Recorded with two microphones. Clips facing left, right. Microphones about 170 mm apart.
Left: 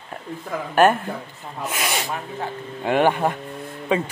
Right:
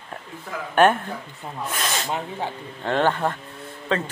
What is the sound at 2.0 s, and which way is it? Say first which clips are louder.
Speech: right 1 dB; 20° right (ahead or behind).